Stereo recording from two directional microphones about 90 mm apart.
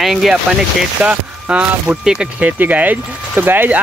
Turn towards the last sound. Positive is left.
turn(degrees=-20)  # may be behind; listen again after turning